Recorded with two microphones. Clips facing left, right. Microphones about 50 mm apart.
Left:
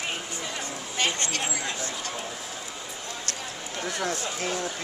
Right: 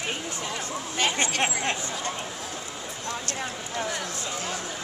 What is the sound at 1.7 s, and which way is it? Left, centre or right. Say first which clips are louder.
Speech: right 2 dB; right.